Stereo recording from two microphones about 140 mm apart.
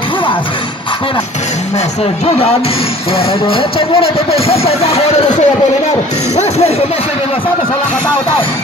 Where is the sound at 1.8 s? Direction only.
45° left (ahead or behind).